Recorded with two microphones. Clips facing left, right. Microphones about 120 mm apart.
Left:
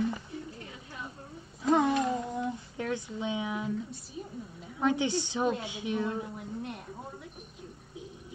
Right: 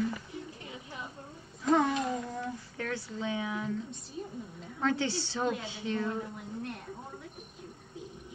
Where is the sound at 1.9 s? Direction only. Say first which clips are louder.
Left 3 dB; 25° left (ahead or behind).